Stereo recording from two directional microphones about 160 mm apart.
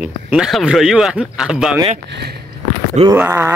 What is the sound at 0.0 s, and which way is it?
Speech, 5° right (ahead or behind).